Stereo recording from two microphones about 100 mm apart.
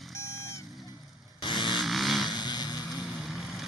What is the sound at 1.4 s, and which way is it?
Vehicle, 55° left (ahead or behind).